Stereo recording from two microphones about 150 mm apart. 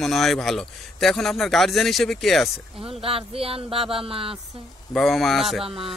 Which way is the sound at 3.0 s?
40° right (ahead or behind).